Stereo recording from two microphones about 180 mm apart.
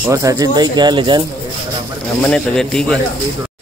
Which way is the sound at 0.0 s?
15° right (ahead or behind).